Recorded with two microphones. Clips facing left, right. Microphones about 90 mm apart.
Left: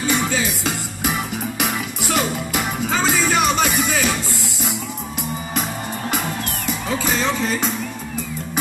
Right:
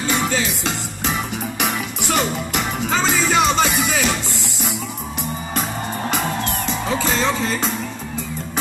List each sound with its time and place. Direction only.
0.0 s music: centre (ahead or behind)